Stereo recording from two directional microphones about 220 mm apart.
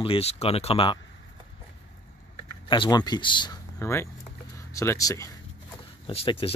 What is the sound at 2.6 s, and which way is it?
Speech, 20° left (ahead or behind).